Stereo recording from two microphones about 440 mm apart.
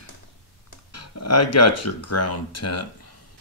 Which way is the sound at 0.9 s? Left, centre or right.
Left.